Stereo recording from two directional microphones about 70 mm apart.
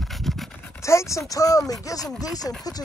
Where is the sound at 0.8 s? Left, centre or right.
Left.